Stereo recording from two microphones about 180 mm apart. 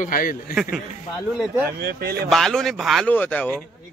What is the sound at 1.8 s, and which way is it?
Speech, 60° right (ahead or behind).